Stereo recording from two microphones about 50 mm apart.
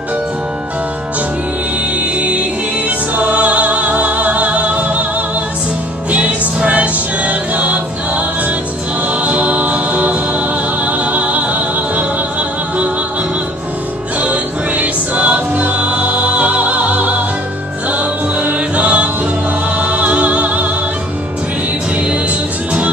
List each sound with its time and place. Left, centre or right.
2.0 s music: right
6.1 s music: right
9.2 s music: right
14.2 s music: right